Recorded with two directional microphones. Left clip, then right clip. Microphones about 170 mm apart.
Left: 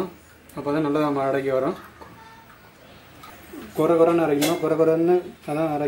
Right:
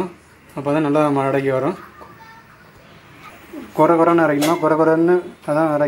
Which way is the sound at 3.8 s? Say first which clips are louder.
Right 5 dB; 15° right (ahead or behind).